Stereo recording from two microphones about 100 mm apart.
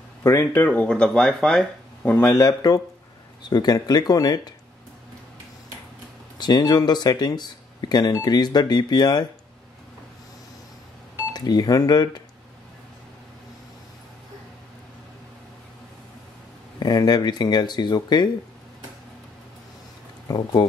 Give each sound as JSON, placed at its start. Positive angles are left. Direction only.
{"t": 0.2, "sound": "speech", "side_deg": 25}
{"t": 2.0, "sound": "a man's voice", "side_deg": 20}
{"t": 2.3, "sound": "speech", "side_deg": 35}
{"t": 6.3, "sound": "speech", "side_deg": 45}
{"t": 11.3, "sound": "speech", "side_deg": 45}
{"t": 16.8, "sound": "speech", "side_deg": 45}
{"t": 20.2, "sound": "speech", "side_deg": 45}